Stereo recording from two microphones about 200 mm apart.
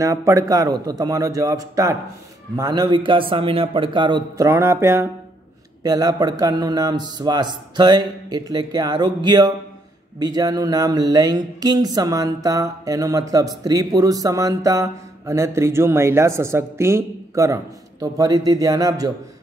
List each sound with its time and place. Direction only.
0.0 s a man's voice: 15° right (ahead or behind)